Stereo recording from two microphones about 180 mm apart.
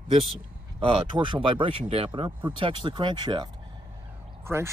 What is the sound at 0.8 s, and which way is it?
Speech, 25° right (ahead or behind).